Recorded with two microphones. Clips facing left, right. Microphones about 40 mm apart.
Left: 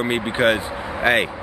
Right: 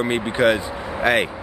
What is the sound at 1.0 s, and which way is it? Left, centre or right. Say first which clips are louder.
Speech: left 1 dB; centre.